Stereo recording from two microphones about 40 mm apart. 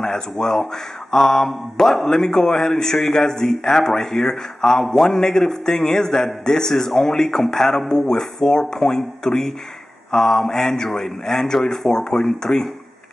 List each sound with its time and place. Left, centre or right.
0.0 s a man's voice: centre
8.1 s a man's voice: centre